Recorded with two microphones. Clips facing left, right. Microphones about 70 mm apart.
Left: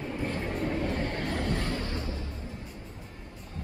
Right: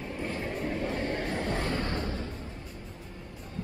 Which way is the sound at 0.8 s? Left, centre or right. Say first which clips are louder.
Even; centre.